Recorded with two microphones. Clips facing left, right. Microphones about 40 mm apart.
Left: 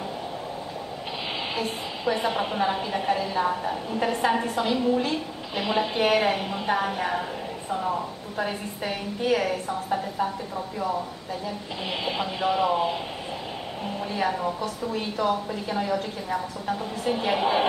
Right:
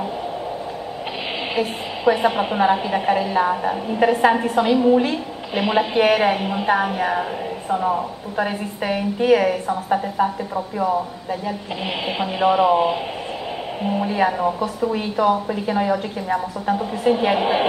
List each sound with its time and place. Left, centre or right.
1.5 s a woman's voice: centre
12.1 s a woman's voice: right
14.1 s a woman's voice: centre